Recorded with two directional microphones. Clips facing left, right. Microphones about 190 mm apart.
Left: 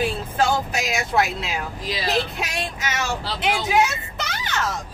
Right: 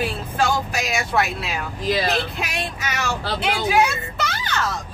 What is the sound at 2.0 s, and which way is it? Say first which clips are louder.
Speech: even; 25° left (ahead or behind).